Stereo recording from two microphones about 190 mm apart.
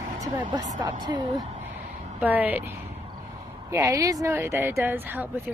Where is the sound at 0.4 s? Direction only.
25° right (ahead or behind).